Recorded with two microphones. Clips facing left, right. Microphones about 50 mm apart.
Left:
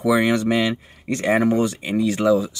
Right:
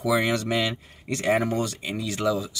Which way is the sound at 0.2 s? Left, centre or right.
Left.